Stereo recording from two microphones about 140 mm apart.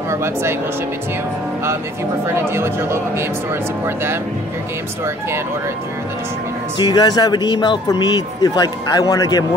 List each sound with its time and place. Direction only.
0.1 s speech: 20° right (ahead or behind)
2.4 s speech: 15° right (ahead or behind)
6.8 s speech: 30° left (ahead or behind)